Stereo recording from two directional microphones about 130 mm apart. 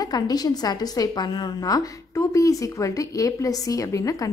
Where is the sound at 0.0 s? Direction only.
30° left (ahead or behind).